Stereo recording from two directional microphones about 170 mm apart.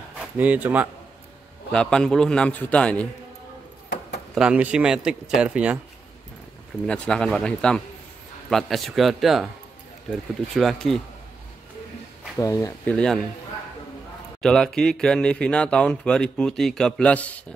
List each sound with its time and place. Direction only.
0.2 s a man's voice: 10° right (ahead or behind)
1.7 s speech: 5° left (ahead or behind)
4.4 s speech: 10° right (ahead or behind)
6.9 s speech: 5° left (ahead or behind)
10.5 s speech: centre (ahead or behind)
12.4 s speech: 20° left (ahead or behind)
12.8 s speech: 5° left (ahead or behind)
14.4 s speech: 5° left (ahead or behind)